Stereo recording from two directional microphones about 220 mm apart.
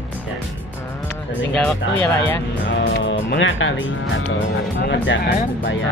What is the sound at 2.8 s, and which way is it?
Speech, 55° left (ahead or behind).